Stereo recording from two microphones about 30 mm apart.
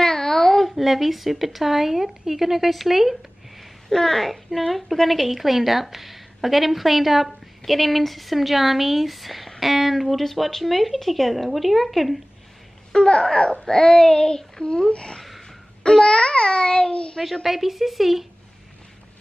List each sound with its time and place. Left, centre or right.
0.0 s babbling: centre
0.7 s a woman's voice: centre
3.9 s a woman's voice: centre
12.9 s a sound: left
13.7 s child singing: centre
14.1 s speech: left
16.1 s a sound: left
16.9 s speech: left
17.2 s a woman's voice: centre